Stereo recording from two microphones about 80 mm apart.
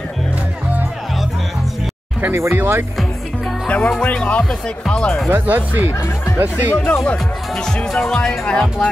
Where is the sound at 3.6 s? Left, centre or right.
Centre.